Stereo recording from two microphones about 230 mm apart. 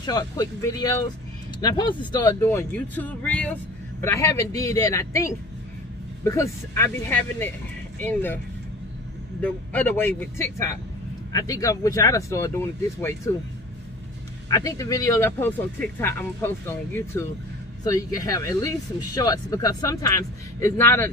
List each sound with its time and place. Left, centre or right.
0.0 s speech: centre
9.4 s speech: centre
14.5 s speech: centre